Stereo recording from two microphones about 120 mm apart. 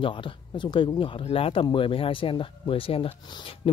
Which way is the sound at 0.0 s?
45° left (ahead or behind).